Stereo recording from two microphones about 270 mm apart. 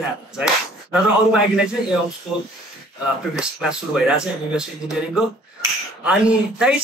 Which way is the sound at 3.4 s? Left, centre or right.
Centre.